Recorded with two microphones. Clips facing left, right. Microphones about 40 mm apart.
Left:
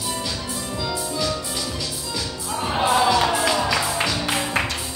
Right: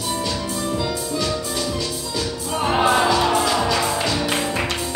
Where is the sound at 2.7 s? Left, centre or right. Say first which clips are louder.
Right 2 dB; right.